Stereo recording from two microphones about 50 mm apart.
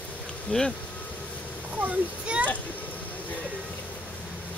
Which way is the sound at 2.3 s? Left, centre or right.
Centre.